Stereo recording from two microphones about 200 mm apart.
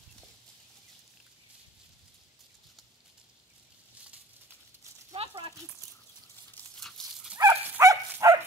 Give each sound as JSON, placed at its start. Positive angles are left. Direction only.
{"t": 5.1, "sound": "a sound", "side_deg": -30}
{"t": 6.5, "sound": "dog", "side_deg": 0}
{"t": 7.3, "sound": "dog", "side_deg": -15}